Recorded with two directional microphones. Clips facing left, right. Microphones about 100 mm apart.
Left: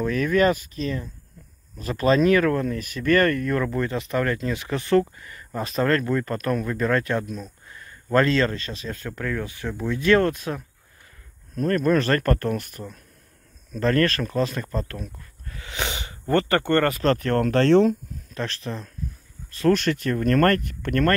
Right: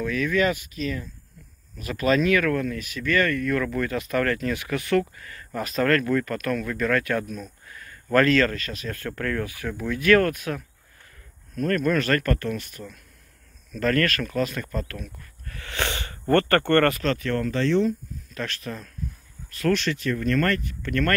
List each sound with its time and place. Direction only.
0.0 s speech: 40° left (ahead or behind)
3.6 s a man's voice: 25° left (ahead or behind)
15.1 s a sound: 20° left (ahead or behind)
17.0 s speech: 45° left (ahead or behind)
17.4 s speech: 65° left (ahead or behind); by 17.9 s 80° left
18.3 s speech: 30° left (ahead or behind)
19.7 s speech: 45° left (ahead or behind)